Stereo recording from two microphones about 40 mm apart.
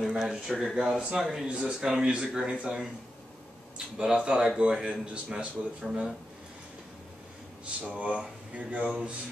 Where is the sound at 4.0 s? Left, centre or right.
Right.